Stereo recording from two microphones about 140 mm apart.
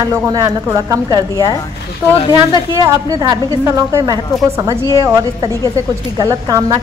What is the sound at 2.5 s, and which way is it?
A woman's voice, 25° right (ahead or behind).